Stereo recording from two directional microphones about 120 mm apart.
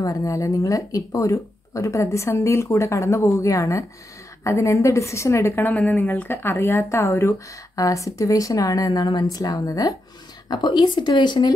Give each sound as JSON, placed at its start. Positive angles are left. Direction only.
{"t": 0.0, "sound": "a woman's voice", "side_deg": 30}